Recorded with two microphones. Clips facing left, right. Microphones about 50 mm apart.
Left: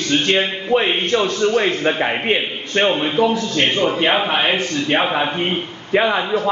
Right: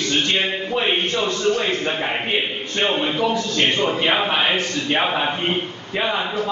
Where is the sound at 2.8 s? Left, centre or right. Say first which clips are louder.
Left 3 dB; centre.